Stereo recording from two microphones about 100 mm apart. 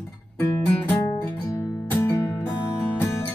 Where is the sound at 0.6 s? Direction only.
15° left (ahead or behind).